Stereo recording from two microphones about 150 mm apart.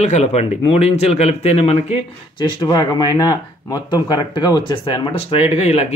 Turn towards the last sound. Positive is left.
turn(degrees=45)  # may be behind; listen again after turning